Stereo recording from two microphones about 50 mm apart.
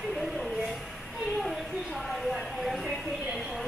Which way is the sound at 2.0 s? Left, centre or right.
Centre.